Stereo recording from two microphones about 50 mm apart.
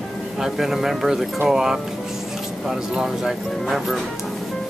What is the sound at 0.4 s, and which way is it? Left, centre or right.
Speech, centre.